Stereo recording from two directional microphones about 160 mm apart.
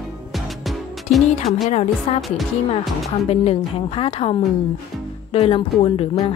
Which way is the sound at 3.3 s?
35° left (ahead or behind).